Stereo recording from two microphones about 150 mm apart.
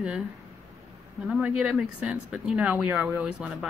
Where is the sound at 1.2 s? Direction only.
5° right (ahead or behind).